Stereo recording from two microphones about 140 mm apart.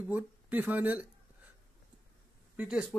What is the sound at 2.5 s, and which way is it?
Speech, 5° right (ahead or behind).